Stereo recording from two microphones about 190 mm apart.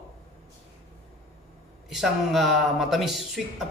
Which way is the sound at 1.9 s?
Centre (ahead or behind).